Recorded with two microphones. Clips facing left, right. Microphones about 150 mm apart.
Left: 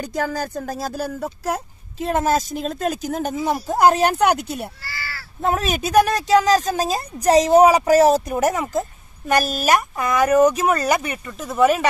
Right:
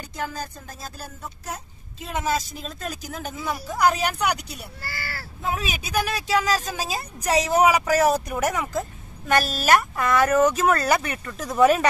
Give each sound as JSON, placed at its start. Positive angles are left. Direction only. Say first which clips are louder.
{"t": 0.0, "sound": "speech", "louder": "left 7 dB", "side_deg": 80}
{"t": 2.6, "sound": "speech", "louder": "left 10 dB", "side_deg": 45}
{"t": 4.8, "sound": "speech", "louder": "even", "side_deg": -50}
{"t": 5.4, "sound": "speech", "louder": "left 8 dB", "side_deg": 45}